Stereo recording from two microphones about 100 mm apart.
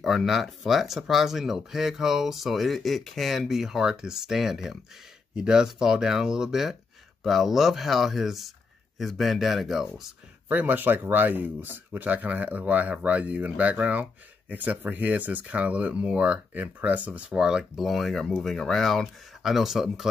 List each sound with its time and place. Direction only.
0.0 s speech: centre (ahead or behind)
10.5 s speech: 15° right (ahead or behind)